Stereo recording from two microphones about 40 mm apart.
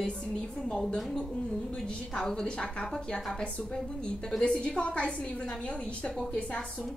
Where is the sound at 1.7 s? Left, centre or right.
Centre; by 6.8 s left.